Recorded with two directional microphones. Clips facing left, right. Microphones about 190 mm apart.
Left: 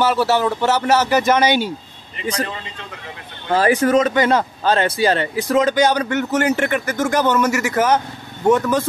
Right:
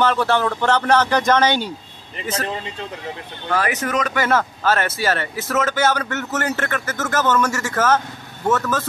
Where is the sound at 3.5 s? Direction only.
30° left (ahead or behind).